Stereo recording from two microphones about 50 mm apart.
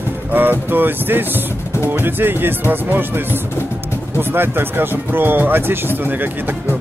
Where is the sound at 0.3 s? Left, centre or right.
Right.